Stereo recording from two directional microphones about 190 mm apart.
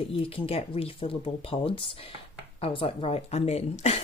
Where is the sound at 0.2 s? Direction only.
30° left (ahead or behind).